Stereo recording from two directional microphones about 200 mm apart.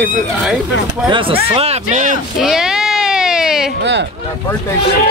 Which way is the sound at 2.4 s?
5° right (ahead or behind).